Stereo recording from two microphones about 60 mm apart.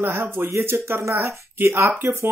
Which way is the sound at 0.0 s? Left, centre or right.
Right.